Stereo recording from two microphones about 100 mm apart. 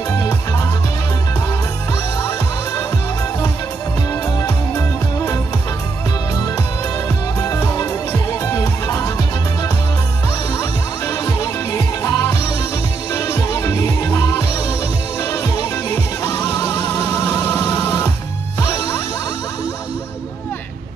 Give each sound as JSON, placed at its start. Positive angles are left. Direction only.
{"t": 0.3, "sound": "music", "side_deg": 30}
{"t": 4.1, "sound": "music", "side_deg": 30}
{"t": 7.8, "sound": "music", "side_deg": 25}
{"t": 10.5, "sound": "music", "side_deg": 30}
{"t": 16.5, "sound": "vehicle", "side_deg": 40}
{"t": 17.1, "sound": "music", "side_deg": 40}
{"t": 17.4, "sound": "music", "side_deg": 25}
{"t": 18.6, "sound": "music", "side_deg": 35}